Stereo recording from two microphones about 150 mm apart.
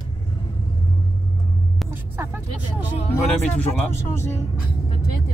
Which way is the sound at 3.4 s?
10° left (ahead or behind).